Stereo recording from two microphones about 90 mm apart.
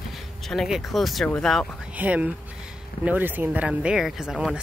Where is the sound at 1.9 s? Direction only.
15° right (ahead or behind).